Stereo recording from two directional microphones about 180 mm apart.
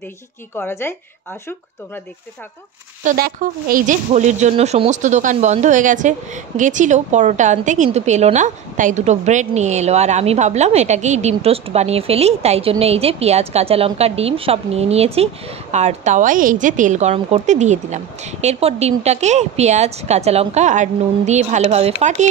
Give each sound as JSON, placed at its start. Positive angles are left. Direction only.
{"t": 0.6, "sound": "speech", "side_deg": 15}
{"t": 3.0, "sound": "speech", "side_deg": -50}